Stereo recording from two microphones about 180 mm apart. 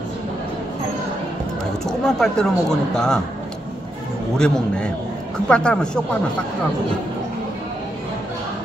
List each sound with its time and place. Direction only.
1.9 s speech: 5° left (ahead or behind)
4.4 s speech: 5° left (ahead or behind)